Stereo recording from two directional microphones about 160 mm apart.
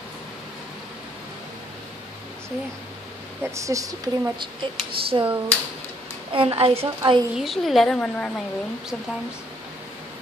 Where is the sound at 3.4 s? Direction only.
20° right (ahead or behind).